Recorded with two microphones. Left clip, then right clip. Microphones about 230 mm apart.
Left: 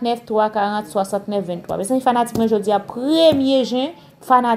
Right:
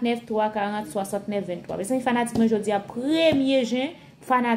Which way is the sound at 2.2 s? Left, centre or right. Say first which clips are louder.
Left 6 dB; left.